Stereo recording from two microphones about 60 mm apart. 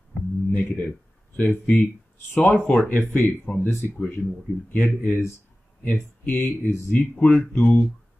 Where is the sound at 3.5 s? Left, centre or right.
Left.